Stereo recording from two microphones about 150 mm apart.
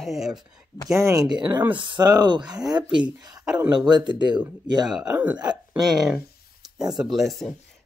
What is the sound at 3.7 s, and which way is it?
Speech, 30° right (ahead or behind).